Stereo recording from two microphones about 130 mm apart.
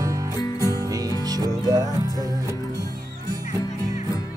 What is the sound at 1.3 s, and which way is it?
Music, 30° right (ahead or behind).